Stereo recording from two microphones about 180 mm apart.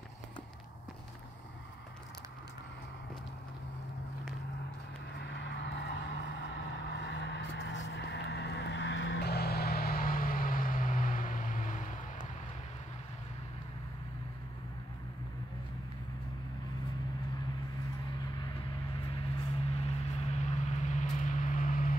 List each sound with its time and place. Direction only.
5.2 s vehicle: 75° left (ahead or behind); by 11.9 s 45° left (ahead or behind)
19.1 s vehicle: 35° left (ahead or behind)